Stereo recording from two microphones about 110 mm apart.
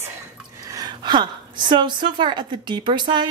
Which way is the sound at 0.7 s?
35° right (ahead or behind).